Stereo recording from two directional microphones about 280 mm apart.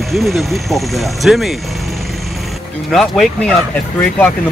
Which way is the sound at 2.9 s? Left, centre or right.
Centre.